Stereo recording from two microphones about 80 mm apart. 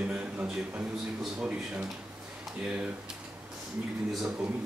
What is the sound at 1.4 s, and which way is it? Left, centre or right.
Speech, centre.